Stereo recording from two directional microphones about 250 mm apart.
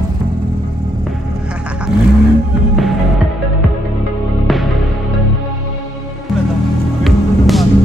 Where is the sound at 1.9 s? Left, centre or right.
Centre.